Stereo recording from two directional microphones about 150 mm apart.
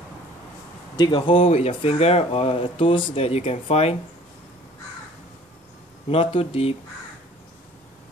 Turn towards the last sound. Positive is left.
turn(degrees=40)  # may be behind; listen again after turning